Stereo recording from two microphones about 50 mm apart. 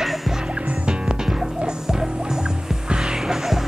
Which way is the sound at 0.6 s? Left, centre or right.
Centre.